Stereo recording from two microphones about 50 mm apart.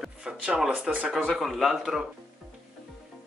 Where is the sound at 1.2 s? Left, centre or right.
Centre.